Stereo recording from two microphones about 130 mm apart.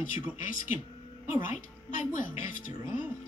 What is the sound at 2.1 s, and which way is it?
Speech, 90° left.